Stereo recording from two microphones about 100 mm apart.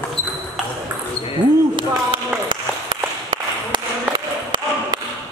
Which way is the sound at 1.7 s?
50° right (ahead or behind).